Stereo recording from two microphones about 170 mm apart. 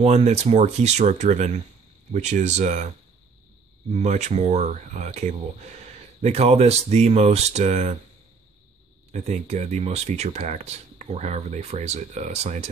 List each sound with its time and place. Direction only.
0.0 s speech: 40° right (ahead or behind)
3.9 s speech: 40° right (ahead or behind)
9.1 s speech: 40° right (ahead or behind)